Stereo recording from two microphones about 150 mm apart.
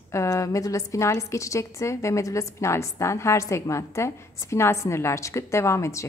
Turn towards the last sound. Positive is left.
turn(degrees=20)  # may be behind; listen again after turning